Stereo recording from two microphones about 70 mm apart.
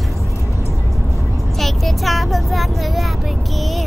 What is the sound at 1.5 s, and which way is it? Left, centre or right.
Vehicle, centre.